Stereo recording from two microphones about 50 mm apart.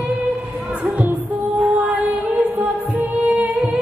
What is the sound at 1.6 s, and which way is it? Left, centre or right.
Music, right.